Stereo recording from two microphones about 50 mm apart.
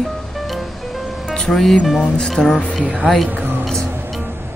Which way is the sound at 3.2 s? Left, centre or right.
Right.